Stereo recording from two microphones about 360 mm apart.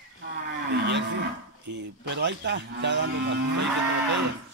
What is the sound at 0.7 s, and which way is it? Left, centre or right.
Speech, right.